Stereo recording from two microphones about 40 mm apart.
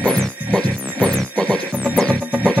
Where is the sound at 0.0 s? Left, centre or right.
Centre.